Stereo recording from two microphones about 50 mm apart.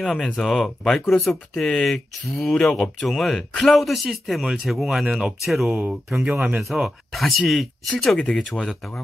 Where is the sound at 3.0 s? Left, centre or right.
Centre.